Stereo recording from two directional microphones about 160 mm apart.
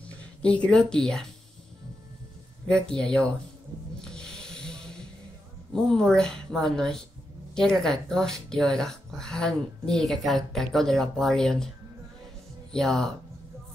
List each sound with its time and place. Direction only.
0.4 s speech: 5° left (ahead or behind)
2.7 s speech: 5° left (ahead or behind)
4.0 s snake: 5° left (ahead or behind)
5.8 s speech: 5° left (ahead or behind)
12.7 s speech: centre (ahead or behind)